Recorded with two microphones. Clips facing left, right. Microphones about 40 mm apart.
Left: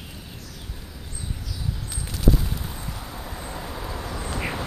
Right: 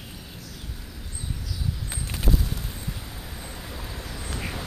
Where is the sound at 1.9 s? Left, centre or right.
Right.